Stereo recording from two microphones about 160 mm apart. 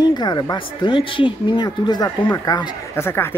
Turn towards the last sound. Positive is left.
turn(degrees=15)  # may be behind; listen again after turning